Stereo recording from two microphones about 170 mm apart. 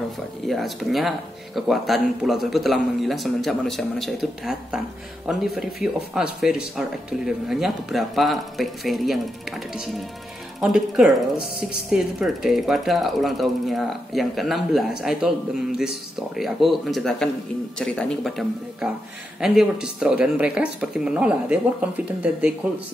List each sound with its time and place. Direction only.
0.5 s speech: centre (ahead or behind)
10.6 s speech: 5° right (ahead or behind)